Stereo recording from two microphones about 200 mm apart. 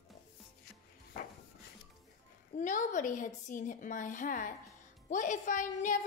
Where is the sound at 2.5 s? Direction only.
40° left (ahead or behind).